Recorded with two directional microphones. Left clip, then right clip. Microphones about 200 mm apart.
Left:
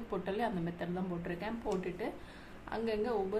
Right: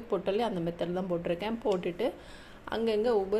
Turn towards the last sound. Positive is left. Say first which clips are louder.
# right 7 dB
turn(degrees=-30)  # may be behind; listen again after turning